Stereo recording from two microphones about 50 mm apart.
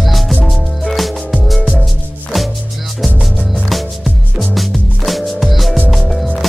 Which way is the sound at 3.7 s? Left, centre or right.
Centre.